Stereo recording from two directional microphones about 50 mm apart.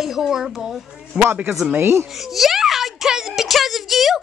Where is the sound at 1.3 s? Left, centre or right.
Right.